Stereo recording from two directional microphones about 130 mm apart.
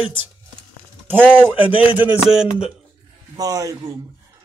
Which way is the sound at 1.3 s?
15° right (ahead or behind).